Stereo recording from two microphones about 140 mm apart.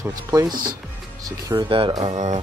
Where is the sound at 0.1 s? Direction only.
25° right (ahead or behind).